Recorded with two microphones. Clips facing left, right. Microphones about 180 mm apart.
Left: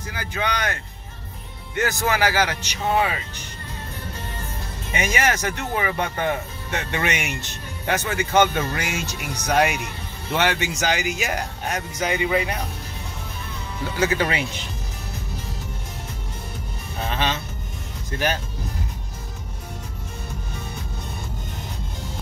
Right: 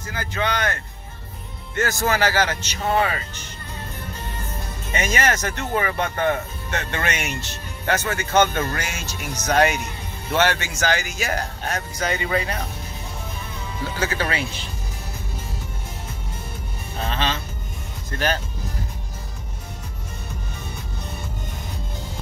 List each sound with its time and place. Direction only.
0.0 s speech: 15° left (ahead or behind)
1.8 s speech: 15° left (ahead or behind)
4.9 s speech: 10° left (ahead or behind)
13.9 s speech: 15° left (ahead or behind)
17.1 s music: 15° left (ahead or behind)
18.1 s speech: 15° left (ahead or behind)